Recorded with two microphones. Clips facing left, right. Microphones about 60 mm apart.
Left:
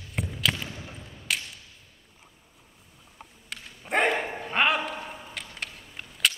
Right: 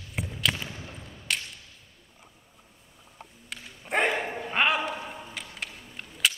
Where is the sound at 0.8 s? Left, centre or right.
Centre.